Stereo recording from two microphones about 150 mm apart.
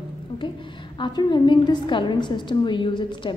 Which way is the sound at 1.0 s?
30° left (ahead or behind).